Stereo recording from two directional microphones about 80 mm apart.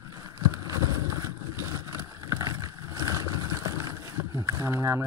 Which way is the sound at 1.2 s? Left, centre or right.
Right.